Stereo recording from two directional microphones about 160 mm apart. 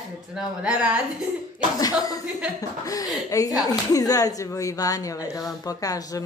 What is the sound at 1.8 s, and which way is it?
Speech, 20° left (ahead or behind).